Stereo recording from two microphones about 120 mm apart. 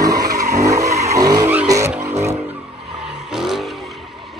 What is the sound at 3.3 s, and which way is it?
Vehicle, centre (ahead or behind).